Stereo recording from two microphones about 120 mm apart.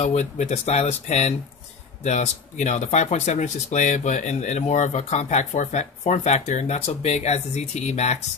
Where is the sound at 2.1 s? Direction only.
75° left (ahead or behind).